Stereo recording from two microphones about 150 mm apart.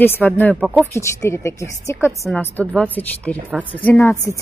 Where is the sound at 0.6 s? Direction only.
5° right (ahead or behind).